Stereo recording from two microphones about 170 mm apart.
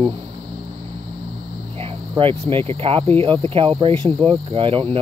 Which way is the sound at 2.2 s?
30° right (ahead or behind).